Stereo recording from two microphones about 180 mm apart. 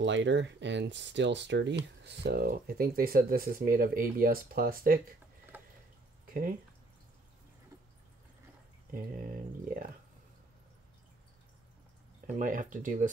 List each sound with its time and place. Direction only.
0.0 s speech: 90° right
2.0 s speech: 65° right (ahead or behind)
6.2 s a sound: 50° right (ahead or behind)
8.9 s speech: 50° right (ahead or behind)
12.3 s speech: 45° right (ahead or behind)